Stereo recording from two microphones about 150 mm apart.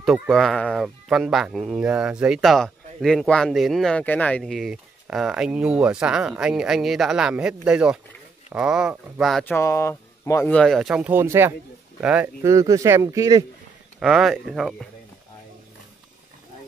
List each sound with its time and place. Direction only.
0.0 s speech: centre (ahead or behind)
9.4 s speech: 15° left (ahead or behind)
10.5 s speech: 5° left (ahead or behind)
12.4 s speech: 20° right (ahead or behind)
13.9 s speech: centre (ahead or behind)